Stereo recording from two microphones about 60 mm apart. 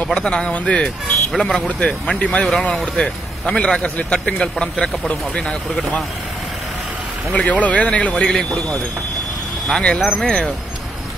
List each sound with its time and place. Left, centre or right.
0.1 s a man's voice: centre
2.1 s a man's voice: left
7.3 s speech: left
9.8 s a man's voice: centre